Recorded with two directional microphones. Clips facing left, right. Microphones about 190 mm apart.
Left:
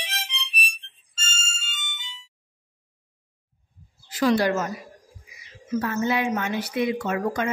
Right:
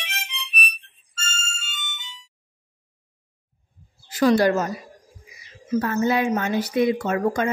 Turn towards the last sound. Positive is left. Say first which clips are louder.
# right 3 dB
turn(degrees=-45)  # may be behind; listen again after turning